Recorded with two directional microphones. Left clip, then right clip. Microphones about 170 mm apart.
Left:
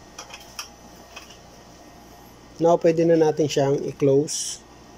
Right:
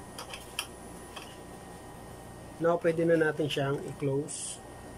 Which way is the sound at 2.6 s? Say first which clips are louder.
Left 9 dB; 30° left (ahead or behind).